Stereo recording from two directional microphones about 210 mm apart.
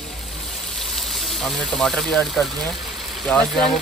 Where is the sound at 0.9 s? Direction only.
Centre (ahead or behind).